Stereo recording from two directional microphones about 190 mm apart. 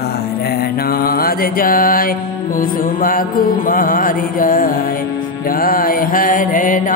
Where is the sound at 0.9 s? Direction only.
50° left (ahead or behind).